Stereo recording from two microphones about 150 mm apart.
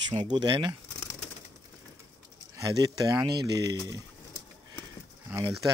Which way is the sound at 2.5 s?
25° right (ahead or behind).